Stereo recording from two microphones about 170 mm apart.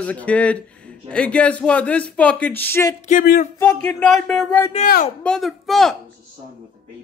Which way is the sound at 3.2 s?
65° left (ahead or behind).